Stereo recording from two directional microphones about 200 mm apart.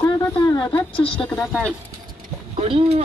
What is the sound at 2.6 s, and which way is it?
Speech, 30° right (ahead or behind).